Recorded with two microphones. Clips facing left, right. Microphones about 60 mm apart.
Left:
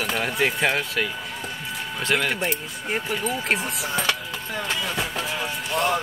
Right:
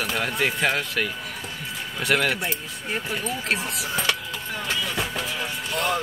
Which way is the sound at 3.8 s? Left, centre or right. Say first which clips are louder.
Left 1 dB; left.